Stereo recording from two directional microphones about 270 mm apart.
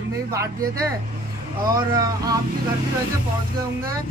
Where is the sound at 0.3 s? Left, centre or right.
Centre.